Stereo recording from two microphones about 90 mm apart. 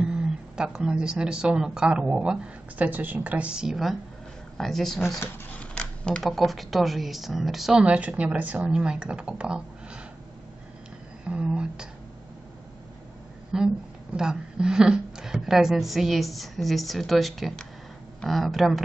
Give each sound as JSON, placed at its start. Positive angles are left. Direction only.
{"t": 0.0, "sound": "a woman's voice", "side_deg": -10}
{"t": 5.5, "sound": "a sound", "side_deg": 15}
{"t": 6.2, "sound": "a woman's voice", "side_deg": 0}
{"t": 7.8, "sound": "speech", "side_deg": -15}
{"t": 11.2, "sound": "speech", "side_deg": -10}
{"t": 13.5, "sound": "a woman's voice", "side_deg": -5}